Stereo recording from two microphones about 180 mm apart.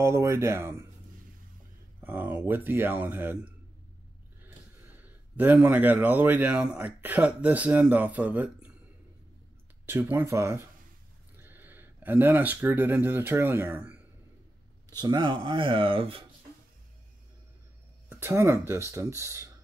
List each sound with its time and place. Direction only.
0.0 s a man's voice: 15° right (ahead or behind)
2.0 s a man's voice: 10° right (ahead or behind)
4.9 s a man's voice: 10° right (ahead or behind)
9.8 s a man's voice: 15° right (ahead or behind)
15.0 s speech: 25° right (ahead or behind)
18.1 s a man's voice: 15° right (ahead or behind)